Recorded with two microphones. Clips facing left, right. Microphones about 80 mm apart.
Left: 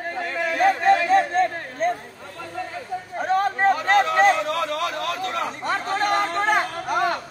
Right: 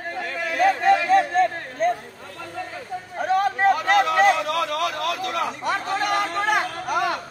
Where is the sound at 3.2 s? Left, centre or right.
Left.